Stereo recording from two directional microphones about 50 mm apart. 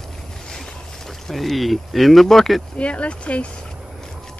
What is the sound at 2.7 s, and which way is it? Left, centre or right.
Speech, left.